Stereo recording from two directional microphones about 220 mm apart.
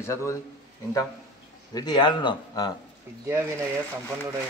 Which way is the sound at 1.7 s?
20° left (ahead or behind).